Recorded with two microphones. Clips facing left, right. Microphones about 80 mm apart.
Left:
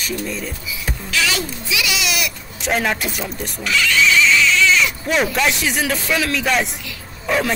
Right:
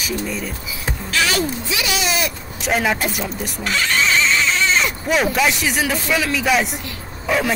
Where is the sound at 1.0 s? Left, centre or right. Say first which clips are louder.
Right 2 dB; right.